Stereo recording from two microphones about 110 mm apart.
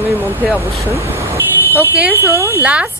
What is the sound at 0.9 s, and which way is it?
Vehicle, 25° right (ahead or behind).